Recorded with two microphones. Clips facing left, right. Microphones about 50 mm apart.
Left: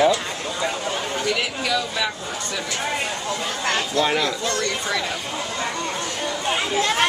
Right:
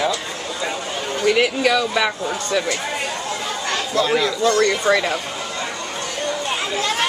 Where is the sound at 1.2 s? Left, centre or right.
Right.